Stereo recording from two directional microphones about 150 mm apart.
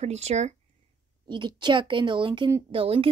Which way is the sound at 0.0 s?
45° right (ahead or behind).